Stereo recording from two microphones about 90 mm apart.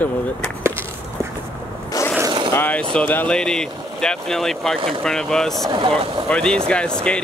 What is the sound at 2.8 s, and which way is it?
Speech, 10° left (ahead or behind).